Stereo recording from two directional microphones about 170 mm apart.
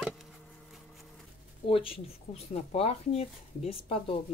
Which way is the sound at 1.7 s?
35° left (ahead or behind).